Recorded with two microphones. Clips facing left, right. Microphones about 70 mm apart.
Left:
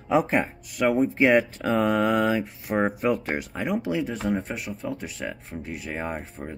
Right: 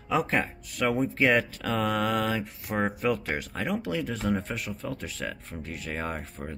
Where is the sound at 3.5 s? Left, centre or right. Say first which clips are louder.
Left 4 dB; centre.